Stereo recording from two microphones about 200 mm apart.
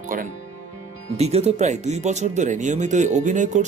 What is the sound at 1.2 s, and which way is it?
Speech, 30° right (ahead or behind).